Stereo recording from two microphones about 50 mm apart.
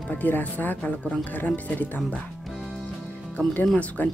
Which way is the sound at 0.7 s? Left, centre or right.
Left.